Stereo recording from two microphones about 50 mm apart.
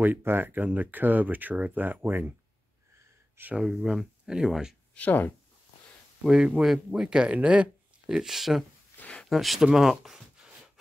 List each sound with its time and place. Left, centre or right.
0.0 s speech: right
3.4 s speech: right
3.7 s speech: centre
4.9 s speech: left
6.2 s speech: centre
8.1 s speech: centre
9.0 s a sound: left
9.3 s speech: centre
9.6 s speech: centre